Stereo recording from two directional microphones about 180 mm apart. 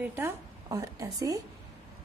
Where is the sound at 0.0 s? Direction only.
10° right (ahead or behind).